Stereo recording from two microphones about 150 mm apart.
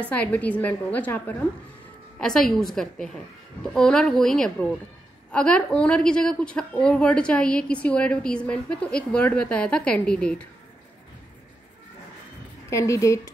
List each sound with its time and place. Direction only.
0.1 s a woman's voice: 10° left (ahead or behind)
12.6 s speech: 20° left (ahead or behind)